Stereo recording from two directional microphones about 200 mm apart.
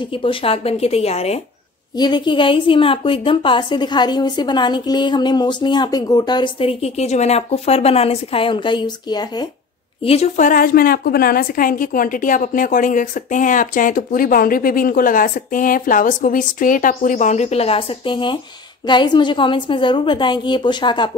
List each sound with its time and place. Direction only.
0.0 s a woman's voice: 25° left (ahead or behind)
10.0 s a woman's voice: 30° left (ahead or behind)